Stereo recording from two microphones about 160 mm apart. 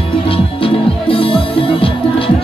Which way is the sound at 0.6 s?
35° left (ahead or behind).